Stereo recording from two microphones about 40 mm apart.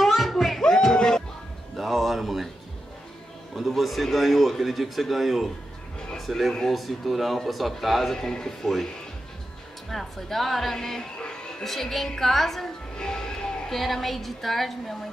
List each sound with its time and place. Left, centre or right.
0.0 s music: centre
0.6 s a sound: centre
1.8 s a sound: centre
3.5 s speech: centre
9.8 s speech: centre
11.6 s a woman's voice: centre
12.9 s music: centre
13.7 s speech: centre